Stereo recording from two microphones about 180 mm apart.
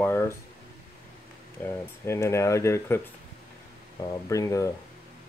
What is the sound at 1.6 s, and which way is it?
Speech, 10° left (ahead or behind).